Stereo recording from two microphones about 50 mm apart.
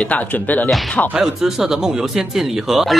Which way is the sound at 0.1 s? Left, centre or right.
Left.